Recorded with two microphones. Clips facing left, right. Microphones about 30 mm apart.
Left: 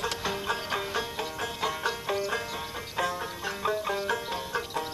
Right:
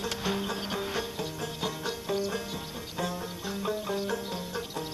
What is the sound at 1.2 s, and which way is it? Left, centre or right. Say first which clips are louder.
Music: left 2 dB; left.